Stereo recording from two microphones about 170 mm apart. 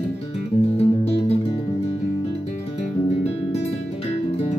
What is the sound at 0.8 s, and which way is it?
Music, 35° left (ahead or behind).